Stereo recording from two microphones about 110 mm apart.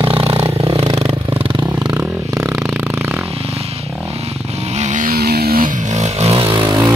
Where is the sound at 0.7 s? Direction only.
70° right (ahead or behind).